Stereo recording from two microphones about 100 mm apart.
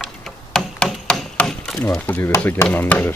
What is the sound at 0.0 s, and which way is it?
Tick-tock, 5° left (ahead or behind).